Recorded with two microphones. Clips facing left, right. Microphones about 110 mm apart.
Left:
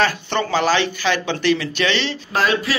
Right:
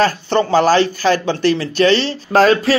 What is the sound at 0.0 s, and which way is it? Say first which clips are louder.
Speech: right 5 dB; 40° right (ahead or behind).